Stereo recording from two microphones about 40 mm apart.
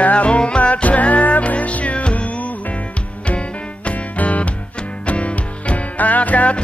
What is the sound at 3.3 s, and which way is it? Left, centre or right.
Music, left.